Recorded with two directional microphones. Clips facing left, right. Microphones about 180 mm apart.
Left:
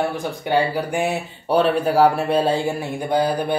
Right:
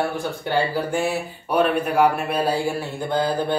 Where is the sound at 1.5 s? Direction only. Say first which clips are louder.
Left 3 dB; 30° left (ahead or behind); by 3.3 s 15° left (ahead or behind).